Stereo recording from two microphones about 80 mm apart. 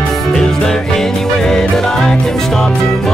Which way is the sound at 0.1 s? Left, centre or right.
Centre.